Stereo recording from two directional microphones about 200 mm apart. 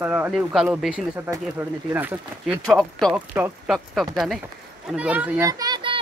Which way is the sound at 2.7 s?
5° left (ahead or behind).